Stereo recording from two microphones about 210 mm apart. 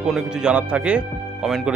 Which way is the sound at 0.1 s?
5° right (ahead or behind).